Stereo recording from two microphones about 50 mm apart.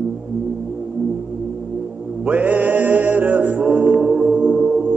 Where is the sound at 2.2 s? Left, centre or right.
Right.